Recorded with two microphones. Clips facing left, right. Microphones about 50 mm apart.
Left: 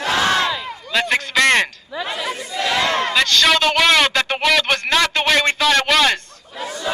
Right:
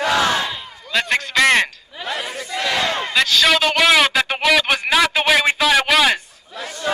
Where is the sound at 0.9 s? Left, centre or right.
Centre.